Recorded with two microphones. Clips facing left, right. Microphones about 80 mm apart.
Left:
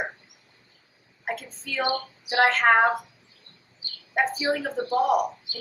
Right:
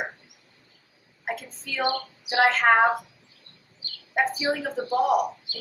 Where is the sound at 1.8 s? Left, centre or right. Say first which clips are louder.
Even; centre.